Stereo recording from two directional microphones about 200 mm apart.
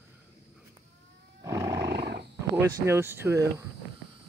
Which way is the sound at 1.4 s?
15° right (ahead or behind).